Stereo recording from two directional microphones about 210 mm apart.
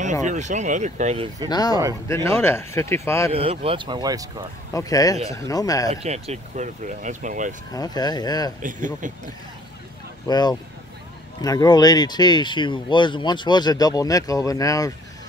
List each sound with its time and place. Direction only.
0.0 s speech: 35° right (ahead or behind)
1.5 s speech: 20° left (ahead or behind)
3.3 s speech: 25° right (ahead or behind)
4.7 s speech: 15° left (ahead or behind)
5.9 s speech: 30° right (ahead or behind)
7.7 s speech: 20° left (ahead or behind)
8.6 s speech: 40° right (ahead or behind)
10.2 s speech: 20° left (ahead or behind)